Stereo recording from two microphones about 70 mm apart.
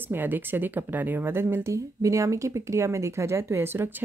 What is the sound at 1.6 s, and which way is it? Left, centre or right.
A woman's voice, right.